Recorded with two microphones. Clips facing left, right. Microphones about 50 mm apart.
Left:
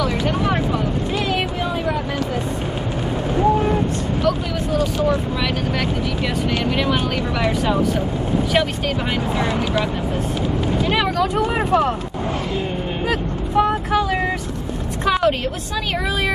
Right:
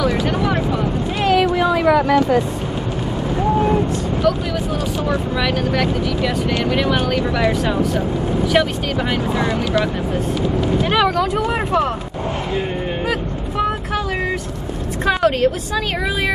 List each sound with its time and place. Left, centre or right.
0.0 s a sound: centre
1.3 s vehicle: right
5.0 s speech: centre
9.1 s speech: centre
11.3 s speech: centre
13.6 s vehicle: centre
15.0 s a woman's voice: centre